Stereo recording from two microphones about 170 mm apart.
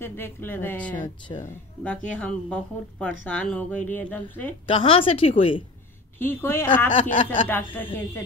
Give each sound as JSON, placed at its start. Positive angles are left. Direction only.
{"t": 0.0, "sound": "speech", "side_deg": 15}
{"t": 1.3, "sound": "a woman's voice", "side_deg": 30}
{"t": 2.0, "sound": "speech", "side_deg": 5}
{"t": 4.6, "sound": "a woman's voice", "side_deg": 30}
{"t": 6.1, "sound": "speech", "side_deg": 10}